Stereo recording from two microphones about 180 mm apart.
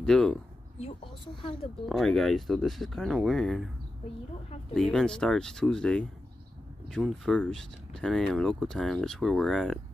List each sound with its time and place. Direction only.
0.0 s speech: 5° left (ahead or behind)
0.7 s speech: 30° left (ahead or behind)
1.9 s speech: centre (ahead or behind)
4.7 s speech: 5° left (ahead or behind)